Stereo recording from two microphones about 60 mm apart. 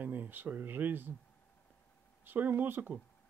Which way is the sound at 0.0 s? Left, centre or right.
Right.